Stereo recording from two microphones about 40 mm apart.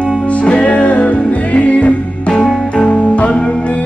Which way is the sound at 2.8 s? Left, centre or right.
Left.